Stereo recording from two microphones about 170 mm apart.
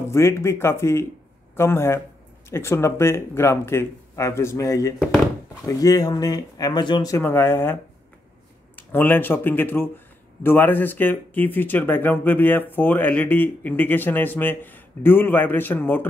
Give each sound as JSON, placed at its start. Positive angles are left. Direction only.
{"t": 0.1, "sound": "speech", "side_deg": 15}